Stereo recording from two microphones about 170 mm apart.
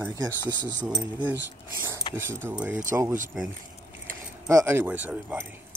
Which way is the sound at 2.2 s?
15° right (ahead or behind).